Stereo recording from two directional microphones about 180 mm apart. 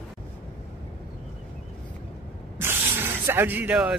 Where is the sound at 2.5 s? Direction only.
10° right (ahead or behind).